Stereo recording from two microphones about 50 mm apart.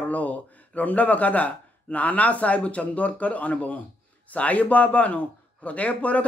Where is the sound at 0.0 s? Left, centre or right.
Left.